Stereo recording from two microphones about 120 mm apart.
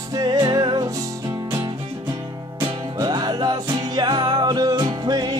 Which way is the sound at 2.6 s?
35° right (ahead or behind).